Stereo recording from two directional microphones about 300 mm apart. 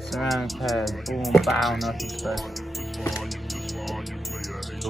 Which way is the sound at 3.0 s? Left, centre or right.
Centre.